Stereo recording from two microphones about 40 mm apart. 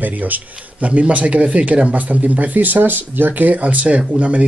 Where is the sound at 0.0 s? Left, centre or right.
Right.